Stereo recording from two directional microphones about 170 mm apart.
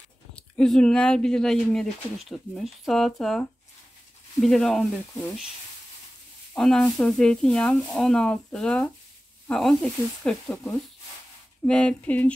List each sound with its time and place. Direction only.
0.4 s speech: 5° left (ahead or behind)
6.5 s speech: 5° left (ahead or behind)
11.6 s a sound: 5° left (ahead or behind)